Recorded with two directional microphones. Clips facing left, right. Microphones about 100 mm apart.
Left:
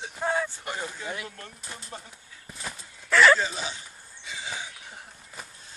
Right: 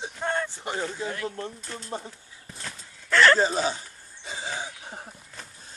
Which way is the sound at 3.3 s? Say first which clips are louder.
Right 7 dB; 40° right (ahead or behind).